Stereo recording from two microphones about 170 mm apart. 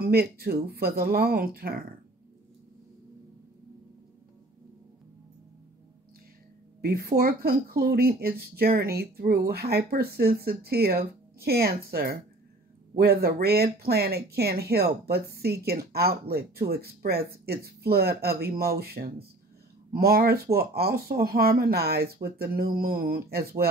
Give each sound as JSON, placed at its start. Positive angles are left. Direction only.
{"t": 0.0, "sound": "speech", "side_deg": -65}
{"t": 6.8, "sound": "speech", "side_deg": -65}